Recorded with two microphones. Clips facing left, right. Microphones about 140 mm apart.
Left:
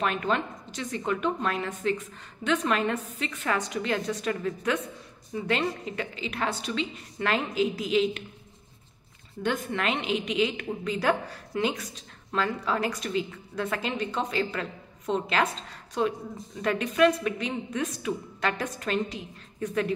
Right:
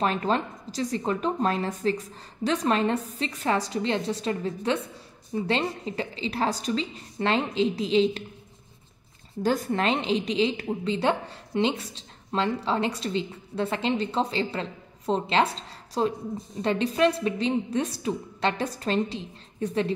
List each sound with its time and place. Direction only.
0.0 s a woman's voice: 35° right (ahead or behind)
9.4 s a woman's voice: 35° right (ahead or behind)